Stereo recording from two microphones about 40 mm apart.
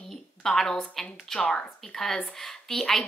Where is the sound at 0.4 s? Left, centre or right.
Centre.